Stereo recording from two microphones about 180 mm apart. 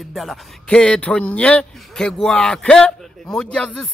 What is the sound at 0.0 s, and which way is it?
Speech, centre (ahead or behind).